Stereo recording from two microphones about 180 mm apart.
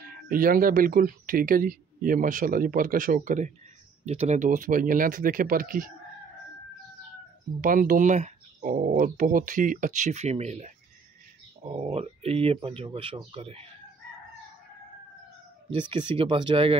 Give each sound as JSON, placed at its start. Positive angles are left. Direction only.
{"t": 0.1, "sound": "speech", "side_deg": -50}
{"t": 7.6, "sound": "speech", "side_deg": -50}
{"t": 16.2, "sound": "speech", "side_deg": -25}